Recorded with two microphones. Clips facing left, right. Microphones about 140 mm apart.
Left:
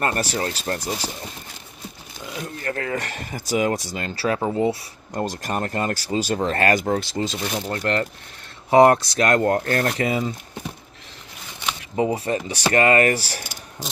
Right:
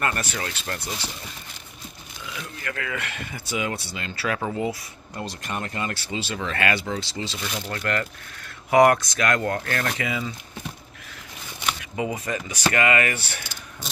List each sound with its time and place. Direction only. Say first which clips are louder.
0.0 s speech: left 4 dB; 35° left (ahead or behind)
5.1 s speech: left 6 dB; 45° left (ahead or behind)
7.7 s speech: left 3 dB; 30° left (ahead or behind)
11.9 s speech: left 8 dB; 35° left (ahead or behind)